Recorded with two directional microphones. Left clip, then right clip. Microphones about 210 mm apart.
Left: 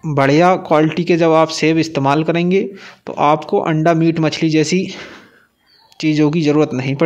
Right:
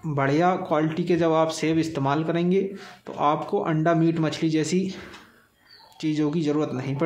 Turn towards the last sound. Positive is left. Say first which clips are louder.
# left 11 dB
turn(degrees=40)  # may be behind; listen again after turning